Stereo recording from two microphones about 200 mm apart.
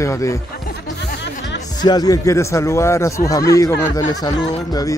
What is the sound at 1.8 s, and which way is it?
Speech, 20° left (ahead or behind).